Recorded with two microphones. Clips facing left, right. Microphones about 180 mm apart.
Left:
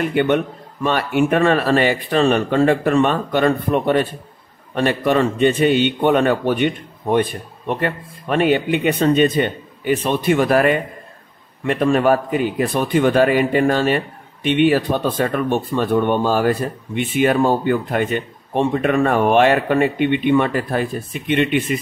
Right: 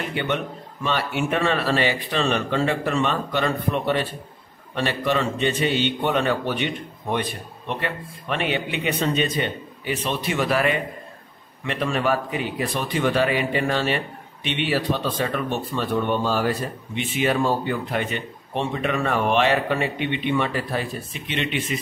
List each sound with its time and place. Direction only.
0.1 s a man's voice: 50° left (ahead or behind)